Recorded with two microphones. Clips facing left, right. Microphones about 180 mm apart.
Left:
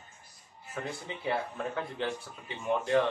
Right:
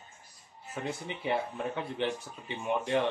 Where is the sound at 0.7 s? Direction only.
20° right (ahead or behind).